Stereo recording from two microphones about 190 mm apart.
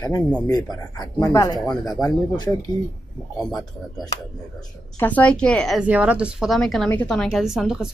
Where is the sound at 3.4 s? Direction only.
Centre (ahead or behind).